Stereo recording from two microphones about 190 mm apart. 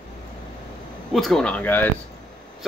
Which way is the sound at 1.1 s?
Centre (ahead or behind).